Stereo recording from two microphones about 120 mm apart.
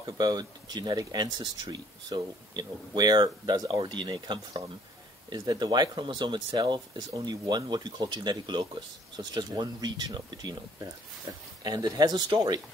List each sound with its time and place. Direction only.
0.0 s speech: 35° right (ahead or behind)